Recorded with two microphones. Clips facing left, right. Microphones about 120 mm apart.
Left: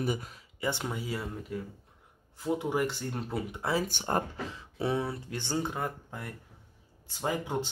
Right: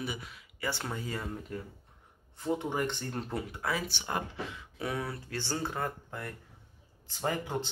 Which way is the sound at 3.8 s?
45° left (ahead or behind).